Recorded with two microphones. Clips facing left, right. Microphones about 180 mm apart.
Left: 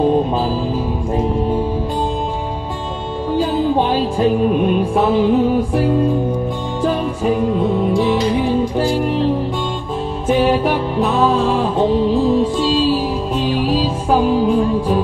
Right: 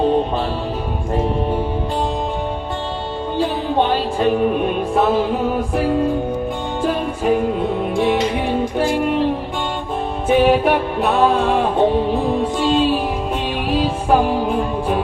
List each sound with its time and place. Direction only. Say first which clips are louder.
7.9 s music: left 2 dB; 60° right (ahead or behind)
10.3 s music: right 1 dB; 60° right (ahead or behind)